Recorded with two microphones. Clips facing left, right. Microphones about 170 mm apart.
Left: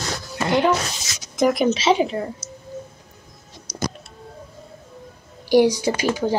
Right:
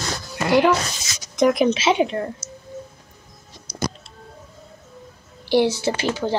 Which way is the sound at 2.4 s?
35° left (ahead or behind).